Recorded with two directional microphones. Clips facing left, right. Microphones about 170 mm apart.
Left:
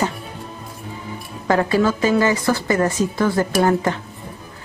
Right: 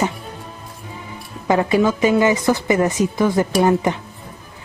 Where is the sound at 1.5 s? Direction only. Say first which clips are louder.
Right 1 dB; 15° right (ahead or behind).